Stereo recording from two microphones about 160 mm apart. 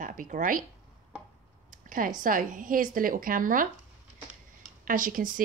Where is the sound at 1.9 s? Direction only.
60° right (ahead or behind).